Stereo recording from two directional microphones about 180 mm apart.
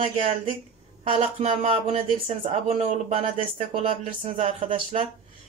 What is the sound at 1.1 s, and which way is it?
Speech, 35° right (ahead or behind).